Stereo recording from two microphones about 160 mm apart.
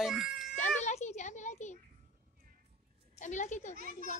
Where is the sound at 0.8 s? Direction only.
45° left (ahead or behind).